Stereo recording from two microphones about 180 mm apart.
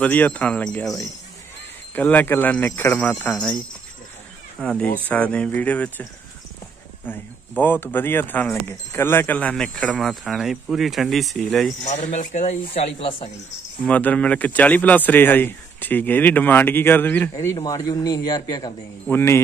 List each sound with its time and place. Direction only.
0.0 s speech: 10° left (ahead or behind)
2.0 s speech: 10° left (ahead or behind)
4.6 s speech: 5° left (ahead or behind)
7.1 s speech: 10° left (ahead or behind)
11.8 s speech: 40° left (ahead or behind)
13.8 s a man's voice: 5° left (ahead or behind)